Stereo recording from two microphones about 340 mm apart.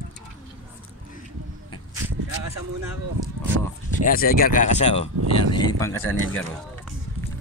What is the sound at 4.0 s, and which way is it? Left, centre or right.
Speech, left.